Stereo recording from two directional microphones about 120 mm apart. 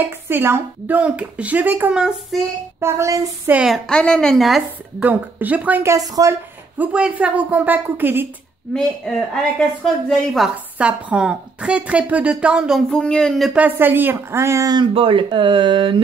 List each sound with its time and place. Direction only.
0.0 s speech: 20° right (ahead or behind)
2.8 s child singing: 25° right (ahead or behind)
3.5 s speech: centre (ahead or behind)
5.0 s speech: 15° right (ahead or behind)
5.9 s child singing: 30° right (ahead or behind)
6.8 s speech: 10° right (ahead or behind)
8.7 s speech: 5° left (ahead or behind)
10.8 s speech: 10° right (ahead or behind)
12.9 s speech: 5° left (ahead or behind)
13.5 s speech: 15° right (ahead or behind); by 14.9 s 30° right (ahead or behind)
15.0 s speech: 45° right (ahead or behind)